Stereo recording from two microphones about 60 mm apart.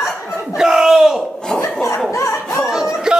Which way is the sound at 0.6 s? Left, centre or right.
Centre.